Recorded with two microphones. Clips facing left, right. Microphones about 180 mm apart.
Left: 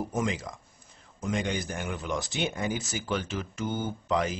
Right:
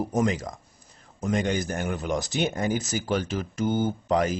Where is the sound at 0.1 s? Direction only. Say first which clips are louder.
Right 5 dB; 45° right (ahead or behind).